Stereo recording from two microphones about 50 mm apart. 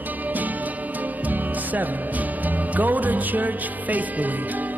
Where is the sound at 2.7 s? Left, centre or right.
Right.